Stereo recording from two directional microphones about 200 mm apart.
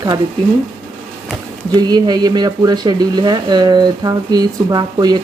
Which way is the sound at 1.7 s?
20° right (ahead or behind).